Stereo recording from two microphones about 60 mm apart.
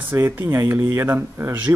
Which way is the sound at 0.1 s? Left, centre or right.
Right.